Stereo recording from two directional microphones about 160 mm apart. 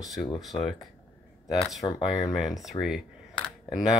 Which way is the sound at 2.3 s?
Centre (ahead or behind).